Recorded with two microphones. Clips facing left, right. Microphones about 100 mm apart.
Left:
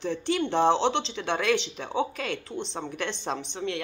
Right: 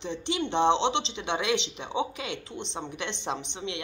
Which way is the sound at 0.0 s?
25° right (ahead or behind).